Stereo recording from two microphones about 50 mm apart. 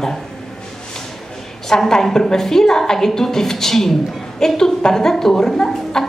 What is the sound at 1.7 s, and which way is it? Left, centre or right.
A woman's voice, centre.